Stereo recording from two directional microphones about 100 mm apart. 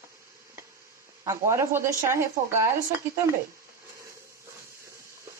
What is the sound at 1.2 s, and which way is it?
Speech, 30° right (ahead or behind).